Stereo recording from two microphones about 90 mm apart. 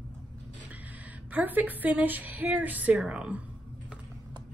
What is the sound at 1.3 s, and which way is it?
Speech, 20° right (ahead or behind).